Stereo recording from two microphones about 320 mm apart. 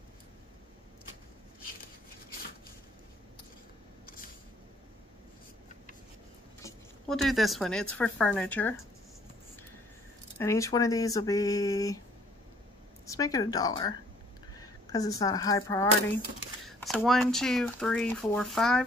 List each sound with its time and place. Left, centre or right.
4.0 s a sound: left
6.6 s speech: centre
10.4 s speech: centre
13.0 s speech: centre